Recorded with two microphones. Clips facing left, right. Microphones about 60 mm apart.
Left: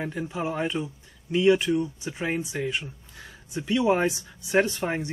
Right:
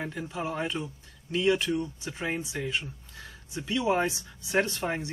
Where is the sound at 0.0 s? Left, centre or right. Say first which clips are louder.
Left 4 dB; centre.